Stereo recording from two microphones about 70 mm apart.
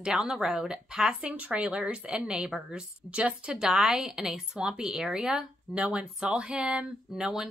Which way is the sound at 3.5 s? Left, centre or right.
Centre.